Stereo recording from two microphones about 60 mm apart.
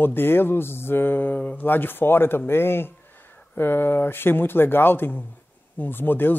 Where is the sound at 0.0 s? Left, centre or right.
Left.